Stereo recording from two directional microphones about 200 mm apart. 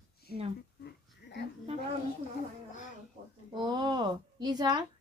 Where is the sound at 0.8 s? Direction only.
55° left (ahead or behind).